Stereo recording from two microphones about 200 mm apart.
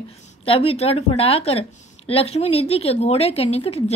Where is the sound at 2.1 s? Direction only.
30° left (ahead or behind).